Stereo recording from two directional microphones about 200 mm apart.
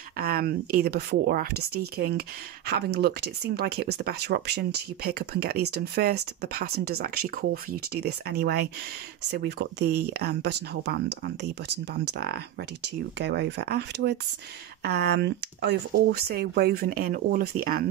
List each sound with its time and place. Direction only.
0.2 s speech: 50° right (ahead or behind)